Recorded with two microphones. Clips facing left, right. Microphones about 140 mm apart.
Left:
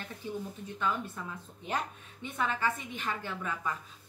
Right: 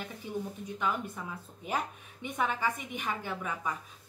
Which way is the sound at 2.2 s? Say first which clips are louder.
Right 1 dB; 15° right (ahead or behind).